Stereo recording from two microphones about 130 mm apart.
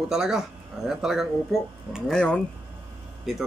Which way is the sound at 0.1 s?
5° right (ahead or behind).